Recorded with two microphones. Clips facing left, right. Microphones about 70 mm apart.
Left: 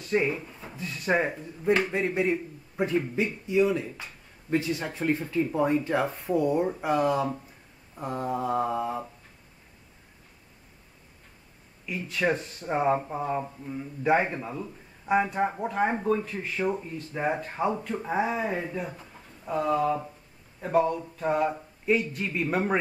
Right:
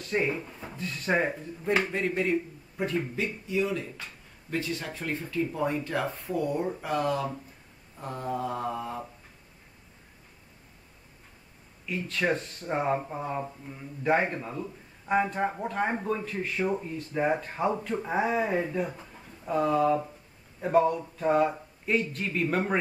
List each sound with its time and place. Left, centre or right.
0.0 s drawer open or close: centre
0.3 s speech: centre
0.7 s speech: centre
11.8 s speech: centre